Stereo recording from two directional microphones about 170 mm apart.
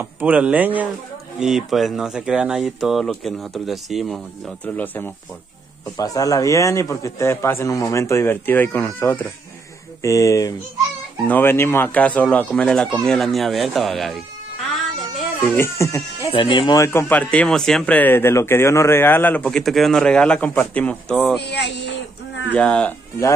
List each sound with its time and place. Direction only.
0.0 s speech: 10° right (ahead or behind)
15.0 s music: 10° left (ahead or behind)
16.3 s speech: 30° left (ahead or behind); by 21.4 s 5° left (ahead or behind)
21.4 s speech: 80° left
22.5 s speech: 5° left (ahead or behind)